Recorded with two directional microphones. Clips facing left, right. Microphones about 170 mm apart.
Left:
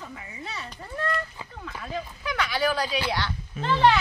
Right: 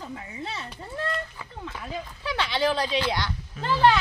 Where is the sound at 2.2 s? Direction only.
30° right (ahead or behind).